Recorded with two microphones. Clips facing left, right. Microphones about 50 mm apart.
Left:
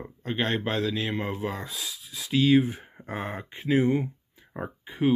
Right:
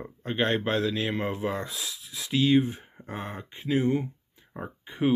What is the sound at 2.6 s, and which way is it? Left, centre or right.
Speech, left.